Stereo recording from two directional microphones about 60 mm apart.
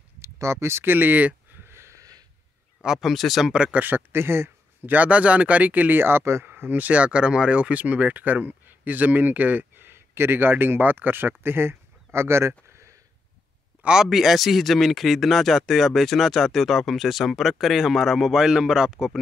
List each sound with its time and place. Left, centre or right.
0.2 s speech: right
0.9 s a sound: right
2.0 s a sound: right
2.8 s speech: centre
3.5 s speech: centre
3.8 s a man's voice: right
4.9 s speech: right
6.4 s speech: right
11.4 s a sound: right
14.1 s speech: centre